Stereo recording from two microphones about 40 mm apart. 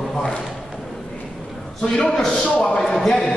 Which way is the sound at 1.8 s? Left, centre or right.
Centre.